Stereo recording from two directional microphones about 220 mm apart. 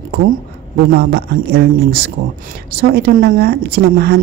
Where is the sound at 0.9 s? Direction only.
45° right (ahead or behind).